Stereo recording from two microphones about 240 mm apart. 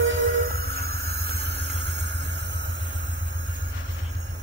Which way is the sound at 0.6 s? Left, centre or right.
Right.